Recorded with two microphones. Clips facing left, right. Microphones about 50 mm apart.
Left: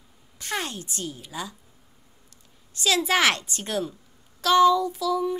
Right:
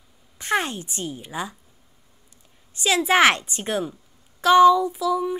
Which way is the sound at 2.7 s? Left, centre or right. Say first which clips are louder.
Right 3 dB; right.